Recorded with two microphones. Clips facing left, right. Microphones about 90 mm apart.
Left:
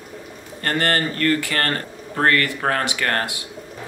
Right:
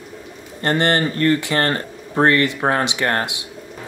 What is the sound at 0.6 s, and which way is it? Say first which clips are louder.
Speech: right 3 dB; 20° right (ahead or behind).